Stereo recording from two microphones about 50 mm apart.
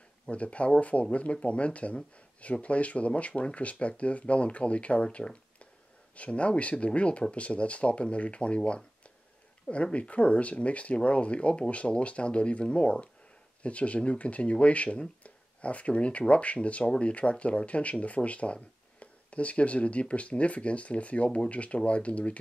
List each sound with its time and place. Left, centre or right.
0.3 s speech: left